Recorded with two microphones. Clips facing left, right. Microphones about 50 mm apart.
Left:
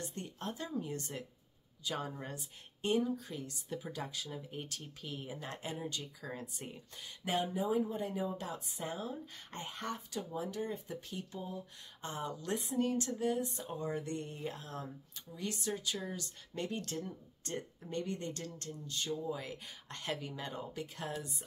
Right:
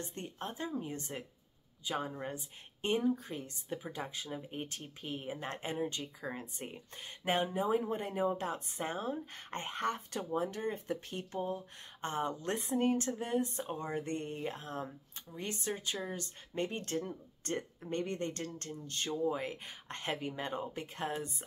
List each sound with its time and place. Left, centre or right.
0.0 s speech: right
2.8 s speech: right